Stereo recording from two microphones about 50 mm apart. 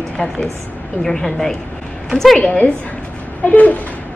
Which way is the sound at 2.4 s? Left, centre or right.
Left.